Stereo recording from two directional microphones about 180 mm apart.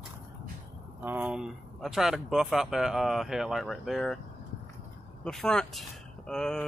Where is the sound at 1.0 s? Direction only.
10° right (ahead or behind).